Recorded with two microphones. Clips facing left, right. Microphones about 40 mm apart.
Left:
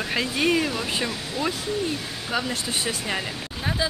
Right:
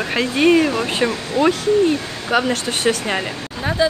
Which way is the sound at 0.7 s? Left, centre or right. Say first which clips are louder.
Right 8 dB; right.